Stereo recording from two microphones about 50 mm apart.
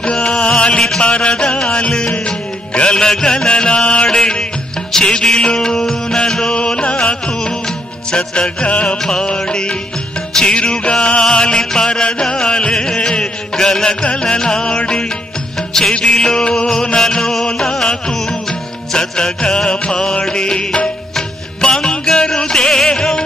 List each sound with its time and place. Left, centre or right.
0.0 s music: centre